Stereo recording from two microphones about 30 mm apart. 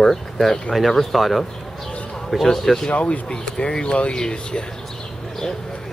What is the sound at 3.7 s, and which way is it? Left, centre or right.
Speech, left.